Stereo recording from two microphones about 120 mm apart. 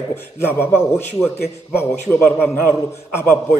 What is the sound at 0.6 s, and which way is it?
A man's voice, 20° left (ahead or behind).